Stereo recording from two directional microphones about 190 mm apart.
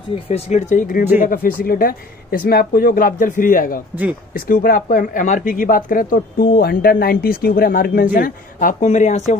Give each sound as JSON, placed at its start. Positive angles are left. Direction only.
{"t": 0.3, "sound": "speech", "side_deg": 35}